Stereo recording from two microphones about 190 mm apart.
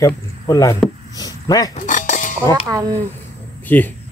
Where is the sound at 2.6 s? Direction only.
20° right (ahead or behind).